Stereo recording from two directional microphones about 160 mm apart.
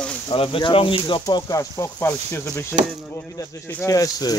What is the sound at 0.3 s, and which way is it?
Speech, 35° left (ahead or behind).